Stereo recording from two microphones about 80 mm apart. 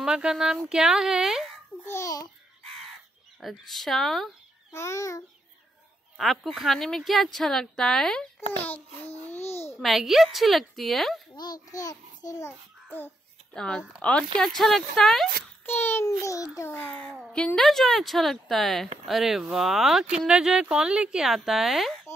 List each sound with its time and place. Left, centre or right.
0.0 s speech: centre
1.9 s a child's voice: left
3.3 s speech: centre
4.7 s a child's voice: left
6.1 s speech: centre
8.4 s a child's voice: left
9.8 s speech: centre
11.3 s a child's voice: left
12.9 s babbling: left
13.6 s speech: centre
15.6 s a child's voice: left
16.1 s a child's voice: left
17.6 s speech: centre